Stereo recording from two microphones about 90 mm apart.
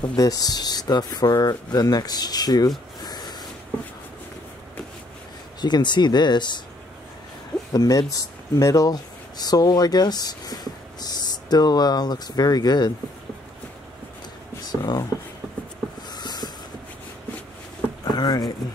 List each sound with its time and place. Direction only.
0.1 s speech: 45° left (ahead or behind)
3.0 s a sound: 50° left (ahead or behind)
5.6 s speech: 55° left (ahead or behind)
7.7 s speech: 40° left (ahead or behind)
14.7 s speech: 50° left (ahead or behind)
16.1 s a sound: 50° left (ahead or behind)
18.0 s vehicle: 45° left (ahead or behind)